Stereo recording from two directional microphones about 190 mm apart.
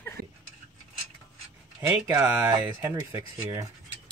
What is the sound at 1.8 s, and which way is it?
Speech, 10° right (ahead or behind).